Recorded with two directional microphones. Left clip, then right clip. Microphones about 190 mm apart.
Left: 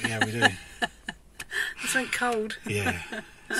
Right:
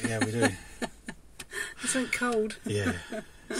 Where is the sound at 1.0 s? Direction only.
20° right (ahead or behind).